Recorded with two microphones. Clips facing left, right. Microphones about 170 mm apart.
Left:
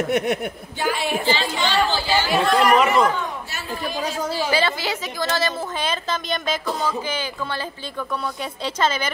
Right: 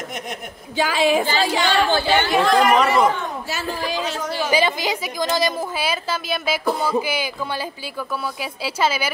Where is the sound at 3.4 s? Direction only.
90° right.